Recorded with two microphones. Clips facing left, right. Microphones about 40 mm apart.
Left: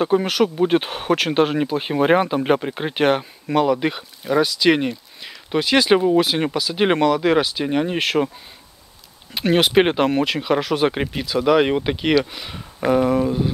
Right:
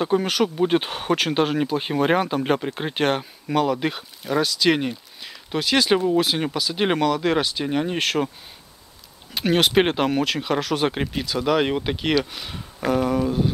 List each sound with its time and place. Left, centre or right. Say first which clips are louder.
0.0 s speech: left 3 dB; centre
9.3 s speech: left 2 dB; centre